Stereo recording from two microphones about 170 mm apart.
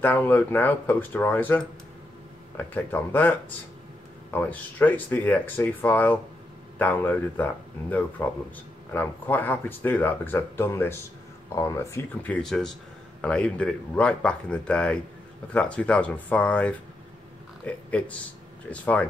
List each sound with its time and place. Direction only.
0.0 s speech: 10° left (ahead or behind)